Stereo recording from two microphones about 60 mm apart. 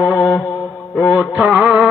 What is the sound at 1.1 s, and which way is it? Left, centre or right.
Music, right.